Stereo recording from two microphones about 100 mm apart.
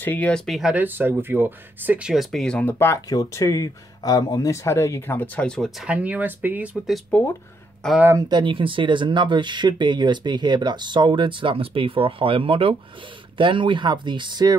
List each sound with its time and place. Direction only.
0.0 s speech: 15° left (ahead or behind)
0.5 s speech: 5° right (ahead or behind)
0.7 s speech: 20° right (ahead or behind)
2.0 s speech: centre (ahead or behind)
3.1 s speech: 35° left (ahead or behind); by 5.7 s 10° left (ahead or behind)
5.8 s speech: 10° right (ahead or behind)
7.1 s speech: 15° left (ahead or behind)
7.8 s speech: 5° left (ahead or behind)
8.2 s speech: 45° right (ahead or behind)